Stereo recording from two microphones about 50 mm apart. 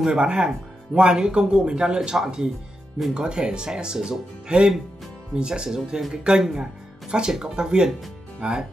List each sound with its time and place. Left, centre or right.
0.0 s speech: centre